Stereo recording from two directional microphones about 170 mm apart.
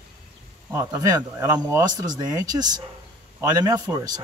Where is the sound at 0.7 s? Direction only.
20° right (ahead or behind).